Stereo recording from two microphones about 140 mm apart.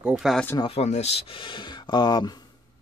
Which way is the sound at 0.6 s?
45° left (ahead or behind).